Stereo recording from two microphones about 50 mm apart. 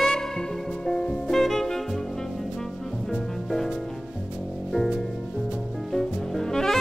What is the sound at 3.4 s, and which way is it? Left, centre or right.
Music, centre.